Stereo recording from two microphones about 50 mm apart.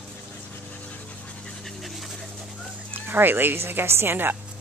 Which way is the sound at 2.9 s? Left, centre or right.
Right.